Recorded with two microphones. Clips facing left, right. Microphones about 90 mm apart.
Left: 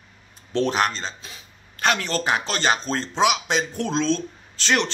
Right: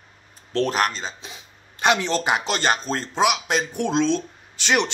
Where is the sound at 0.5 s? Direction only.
Centre (ahead or behind).